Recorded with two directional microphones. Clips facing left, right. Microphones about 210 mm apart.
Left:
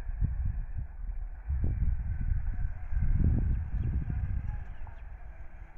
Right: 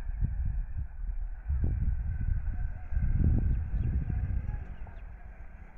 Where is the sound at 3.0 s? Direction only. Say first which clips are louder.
Right 1 dB; 35° right (ahead or behind).